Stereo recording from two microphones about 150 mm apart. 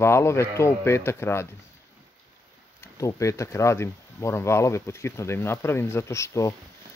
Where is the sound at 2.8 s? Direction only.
20° left (ahead or behind).